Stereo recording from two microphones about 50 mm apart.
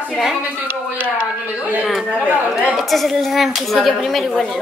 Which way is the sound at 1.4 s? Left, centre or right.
Right.